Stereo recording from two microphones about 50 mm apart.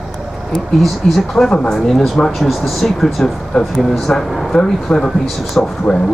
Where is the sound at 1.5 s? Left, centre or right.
Centre.